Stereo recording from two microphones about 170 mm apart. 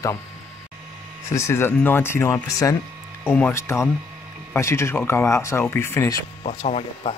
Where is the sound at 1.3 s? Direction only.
15° left (ahead or behind).